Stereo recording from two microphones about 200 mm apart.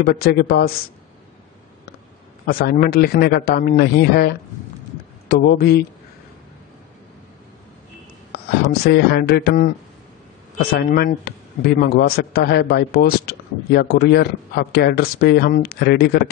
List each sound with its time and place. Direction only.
0.0 s a man's voice: 50° left (ahead or behind)
2.4 s a man's voice: 50° left (ahead or behind)
8.3 s a sound: 55° left (ahead or behind)
8.8 s a man's voice: 55° left (ahead or behind)